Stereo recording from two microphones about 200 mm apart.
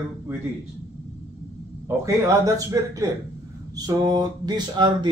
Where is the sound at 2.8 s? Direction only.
15° right (ahead or behind).